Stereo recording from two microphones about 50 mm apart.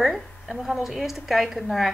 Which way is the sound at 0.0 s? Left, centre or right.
Centre.